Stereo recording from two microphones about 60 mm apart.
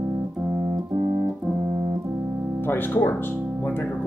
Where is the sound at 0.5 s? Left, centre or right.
Right.